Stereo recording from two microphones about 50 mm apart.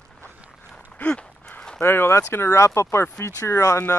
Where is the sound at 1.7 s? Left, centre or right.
Left.